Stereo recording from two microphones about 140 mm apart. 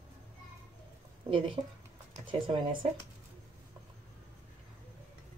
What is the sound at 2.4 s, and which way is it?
Speech, 40° right (ahead or behind).